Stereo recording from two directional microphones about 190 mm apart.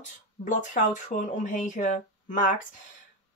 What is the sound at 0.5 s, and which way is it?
Speech, 40° left (ahead or behind).